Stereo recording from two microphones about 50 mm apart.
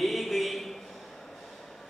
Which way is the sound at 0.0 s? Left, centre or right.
Centre.